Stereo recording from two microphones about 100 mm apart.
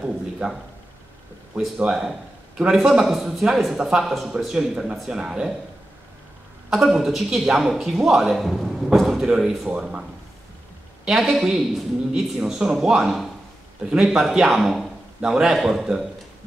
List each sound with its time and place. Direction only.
0.0 s a man's voice: 10° right (ahead or behind)
1.8 s speech: 5° right (ahead or behind)
6.7 s speech: 5° right (ahead or behind)
11.1 s speech: 5° right (ahead or behind)